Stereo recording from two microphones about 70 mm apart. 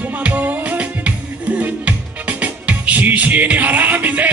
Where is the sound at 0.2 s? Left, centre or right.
Right.